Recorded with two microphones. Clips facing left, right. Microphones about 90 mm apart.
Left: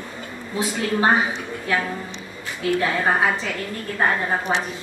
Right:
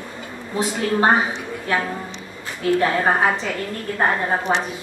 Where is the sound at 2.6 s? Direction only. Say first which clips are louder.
Right 3 dB; 40° right (ahead or behind).